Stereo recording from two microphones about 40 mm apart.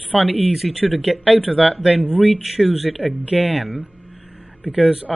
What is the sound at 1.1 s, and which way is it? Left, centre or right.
Speech, right.